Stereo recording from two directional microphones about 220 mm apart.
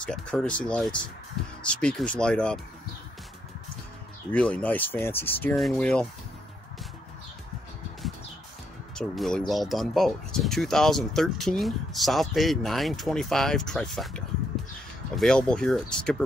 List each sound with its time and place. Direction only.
0.0 s speech: 5° left (ahead or behind)
4.3 s speech: 5° left (ahead or behind)
8.9 s speech: centre (ahead or behind)